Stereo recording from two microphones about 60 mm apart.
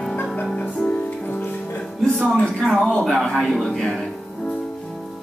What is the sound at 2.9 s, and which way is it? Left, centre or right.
Speech, centre.